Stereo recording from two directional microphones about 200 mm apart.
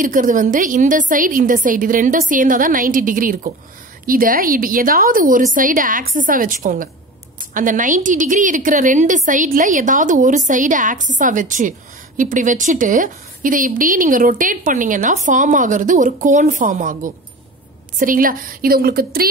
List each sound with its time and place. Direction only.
0.0 s a woman's voice: 40° right (ahead or behind)